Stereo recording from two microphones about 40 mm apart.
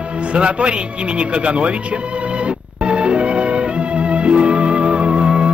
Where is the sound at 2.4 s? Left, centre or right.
Right.